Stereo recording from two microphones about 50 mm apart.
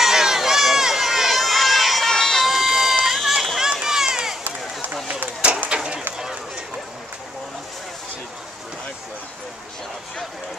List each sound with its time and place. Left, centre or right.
0.0 s run: centre
2.4 s run: centre
5.7 s a sound: right